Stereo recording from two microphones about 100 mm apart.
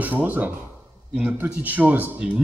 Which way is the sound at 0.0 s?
20° right (ahead or behind).